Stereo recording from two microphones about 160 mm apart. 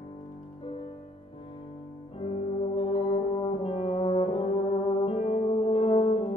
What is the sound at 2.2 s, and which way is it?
Brass instrument, 40° left (ahead or behind).